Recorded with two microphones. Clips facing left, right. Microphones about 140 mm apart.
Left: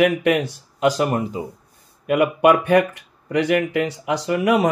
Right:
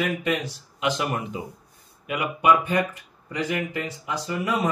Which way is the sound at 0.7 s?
40° left (ahead or behind).